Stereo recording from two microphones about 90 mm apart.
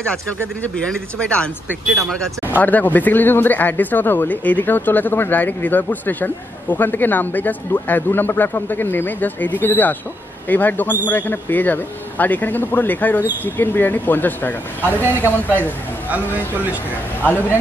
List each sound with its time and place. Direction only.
0.8 s speech: 10° left (ahead or behind)
2.0 s speech: centre (ahead or behind)
2.6 s speech: 20° left (ahead or behind)
17.2 s speech: 20° left (ahead or behind)